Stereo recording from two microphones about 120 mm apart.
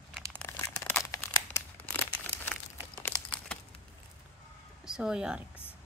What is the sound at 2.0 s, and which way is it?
Crumpling, 15° left (ahead or behind).